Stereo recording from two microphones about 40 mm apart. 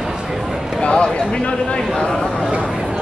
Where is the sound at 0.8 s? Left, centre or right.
Left.